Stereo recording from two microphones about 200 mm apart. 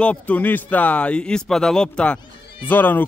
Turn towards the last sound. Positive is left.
turn(degrees=10)  # may be behind; listen again after turning